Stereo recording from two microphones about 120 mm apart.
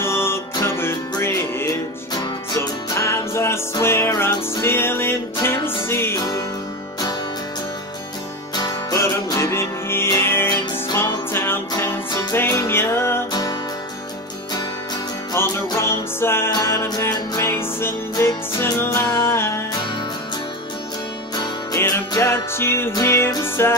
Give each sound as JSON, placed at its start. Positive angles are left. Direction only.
{"t": 0.0, "sound": "music", "side_deg": 20}
{"t": 8.5, "sound": "music", "side_deg": 30}
{"t": 13.3, "sound": "music", "side_deg": 30}
{"t": 15.3, "sound": "music", "side_deg": 20}
{"t": 21.7, "sound": "music", "side_deg": 25}